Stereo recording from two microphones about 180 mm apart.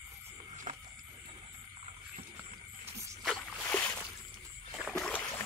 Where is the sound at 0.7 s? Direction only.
45° right (ahead or behind).